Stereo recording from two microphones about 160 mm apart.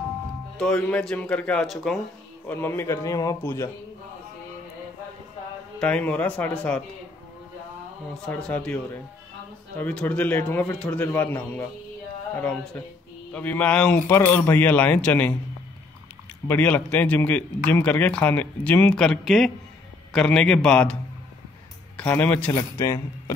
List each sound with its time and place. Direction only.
0.6 s speech: 5° left (ahead or behind)
2.4 s a man's voice: 15° left (ahead or behind)
5.8 s a man's voice: 10° left (ahead or behind)
8.3 s a man's voice: 10° left (ahead or behind)
16.4 s a man's voice: 10° left (ahead or behind)